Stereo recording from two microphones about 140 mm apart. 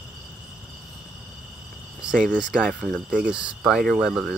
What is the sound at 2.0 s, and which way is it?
Cricket, 5° right (ahead or behind).